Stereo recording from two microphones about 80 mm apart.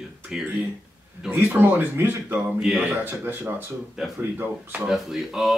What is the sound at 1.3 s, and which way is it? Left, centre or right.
Speech, right.